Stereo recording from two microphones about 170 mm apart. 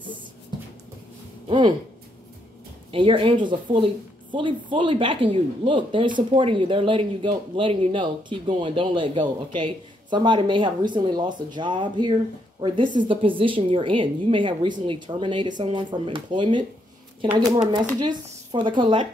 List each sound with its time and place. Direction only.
2.9 s speech: 30° right (ahead or behind)
17.9 s speech: 25° right (ahead or behind)